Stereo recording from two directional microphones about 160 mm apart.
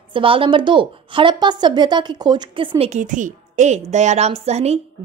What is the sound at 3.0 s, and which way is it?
A woman's voice, 55° right (ahead or behind).